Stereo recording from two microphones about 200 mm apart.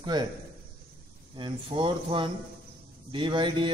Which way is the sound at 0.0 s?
20° right (ahead or behind).